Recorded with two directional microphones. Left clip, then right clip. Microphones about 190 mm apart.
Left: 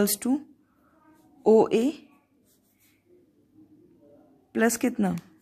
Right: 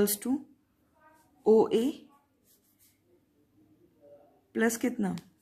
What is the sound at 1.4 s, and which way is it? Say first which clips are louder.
Speech: left 4 dB; 35° left (ahead or behind).